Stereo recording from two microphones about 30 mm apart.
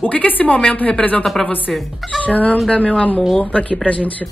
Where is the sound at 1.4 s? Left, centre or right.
Centre.